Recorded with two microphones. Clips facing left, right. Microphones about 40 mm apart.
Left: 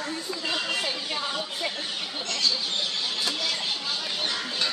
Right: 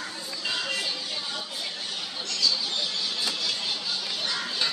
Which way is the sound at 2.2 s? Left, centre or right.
Left.